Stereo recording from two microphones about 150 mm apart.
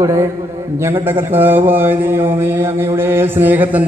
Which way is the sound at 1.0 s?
15° right (ahead or behind).